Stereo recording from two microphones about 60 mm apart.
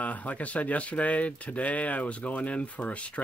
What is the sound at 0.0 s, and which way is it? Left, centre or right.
Speech, left.